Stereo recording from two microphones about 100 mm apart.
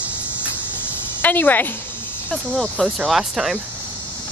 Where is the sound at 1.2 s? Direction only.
20° left (ahead or behind).